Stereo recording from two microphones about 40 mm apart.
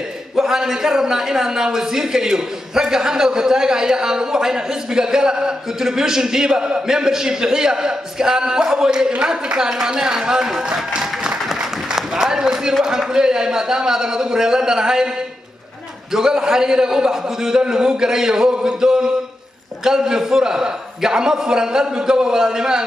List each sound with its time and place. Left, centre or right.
0.4 s a man's voice: centre
11.9 s a sound: centre
12.8 s a man's voice: centre
16.1 s a man's voice: centre